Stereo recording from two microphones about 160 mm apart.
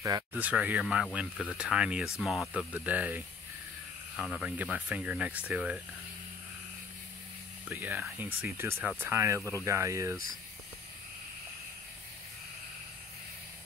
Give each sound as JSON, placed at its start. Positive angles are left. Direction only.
{"t": 0.0, "sound": "speech", "side_deg": -15}
{"t": 7.6, "sound": "speech", "side_deg": -10}
{"t": 9.4, "sound": "speech", "side_deg": 15}
{"t": 9.7, "sound": "speech", "side_deg": -20}